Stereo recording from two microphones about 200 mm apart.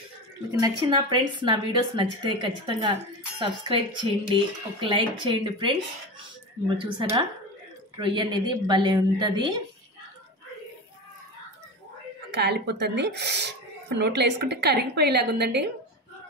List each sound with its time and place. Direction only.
0.5 s a woman's voice: 20° right (ahead or behind)
6.8 s a woman's voice: 25° right (ahead or behind)
12.3 s speech: 55° right (ahead or behind)